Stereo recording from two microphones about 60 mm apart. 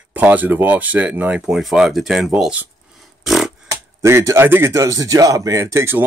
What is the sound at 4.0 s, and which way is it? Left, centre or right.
Speech, right.